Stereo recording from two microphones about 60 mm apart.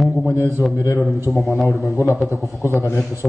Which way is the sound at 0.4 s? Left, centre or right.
Left.